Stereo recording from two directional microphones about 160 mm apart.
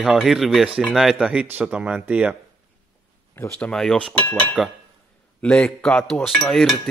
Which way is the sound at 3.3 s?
15° left (ahead or behind).